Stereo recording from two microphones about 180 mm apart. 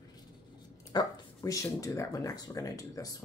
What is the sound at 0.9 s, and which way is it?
Speech, 20° left (ahead or behind).